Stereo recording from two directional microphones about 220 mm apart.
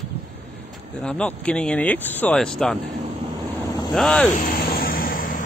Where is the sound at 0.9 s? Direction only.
5° left (ahead or behind).